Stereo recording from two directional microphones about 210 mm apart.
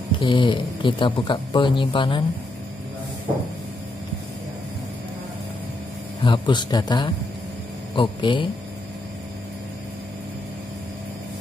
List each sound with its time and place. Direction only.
0.2 s speech: 20° left (ahead or behind)
6.2 s speech: 20° left (ahead or behind)